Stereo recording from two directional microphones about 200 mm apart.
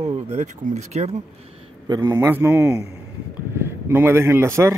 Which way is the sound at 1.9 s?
20° right (ahead or behind).